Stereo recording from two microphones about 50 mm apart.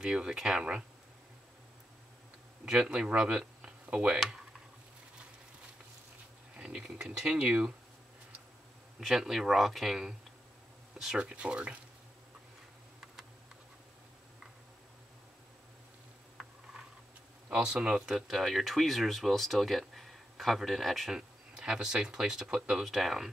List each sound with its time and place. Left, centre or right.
0.0 s speech: centre
2.6 s speech: centre
6.7 s speech: centre
7.2 s speech: right
9.0 s speech: centre
11.3 s speech: right
17.5 s speech: centre
21.1 s a sound: centre
21.7 s speech: centre
22.8 s speech: centre